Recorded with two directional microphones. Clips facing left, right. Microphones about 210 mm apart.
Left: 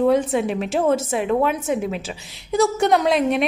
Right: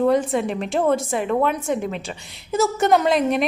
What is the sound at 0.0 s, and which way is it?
A woman's voice, centre (ahead or behind).